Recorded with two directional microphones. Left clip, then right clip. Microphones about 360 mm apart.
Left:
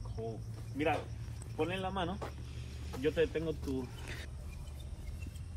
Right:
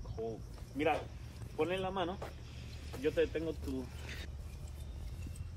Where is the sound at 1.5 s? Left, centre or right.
Left.